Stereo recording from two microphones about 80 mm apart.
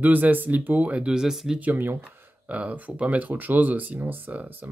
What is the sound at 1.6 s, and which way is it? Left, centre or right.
Speech, right.